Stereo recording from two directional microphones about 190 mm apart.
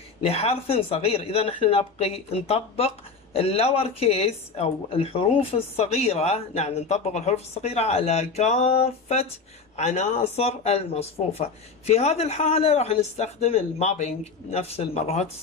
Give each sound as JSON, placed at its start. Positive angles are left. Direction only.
{"t": 0.2, "sound": "speech", "side_deg": 30}